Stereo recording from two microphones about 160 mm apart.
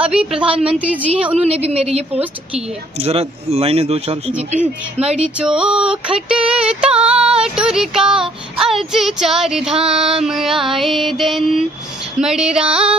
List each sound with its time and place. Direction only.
0.0 s a sound: 5° right (ahead or behind)
1.4 s speech: 40° right (ahead or behind)
5.0 s a sound: 5° right (ahead or behind)
7.0 s child singing: 5° right (ahead or behind)
9.8 s speech: 40° right (ahead or behind)
10.2 s child singing: centre (ahead or behind)